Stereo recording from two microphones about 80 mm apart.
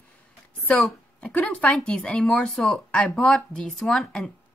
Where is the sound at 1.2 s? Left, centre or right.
Centre.